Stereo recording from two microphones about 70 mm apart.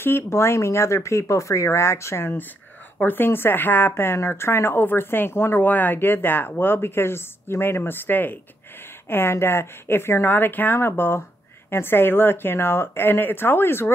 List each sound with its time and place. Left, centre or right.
0.0 s a woman's voice: left